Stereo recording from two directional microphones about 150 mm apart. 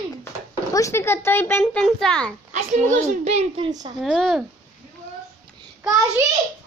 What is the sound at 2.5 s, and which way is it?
Speech, 50° right (ahead or behind).